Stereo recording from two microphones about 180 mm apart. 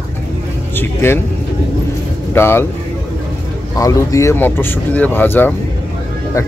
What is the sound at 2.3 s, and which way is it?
Speech, 15° left (ahead or behind).